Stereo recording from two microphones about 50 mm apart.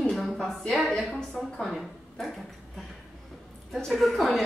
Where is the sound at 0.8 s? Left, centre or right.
Centre.